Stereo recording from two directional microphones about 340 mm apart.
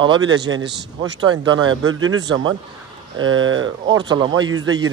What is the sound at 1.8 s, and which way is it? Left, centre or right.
Speech, right.